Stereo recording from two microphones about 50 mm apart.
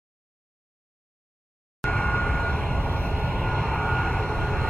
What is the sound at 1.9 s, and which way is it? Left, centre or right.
Vehicle, left.